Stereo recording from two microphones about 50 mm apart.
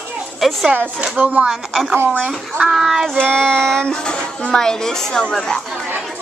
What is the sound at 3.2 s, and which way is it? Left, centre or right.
A child's voice, centre.